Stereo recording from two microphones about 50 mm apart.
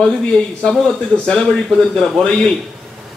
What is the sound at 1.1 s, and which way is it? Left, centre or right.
A man's voice, centre.